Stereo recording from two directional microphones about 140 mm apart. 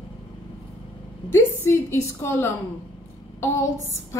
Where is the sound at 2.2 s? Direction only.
15° left (ahead or behind).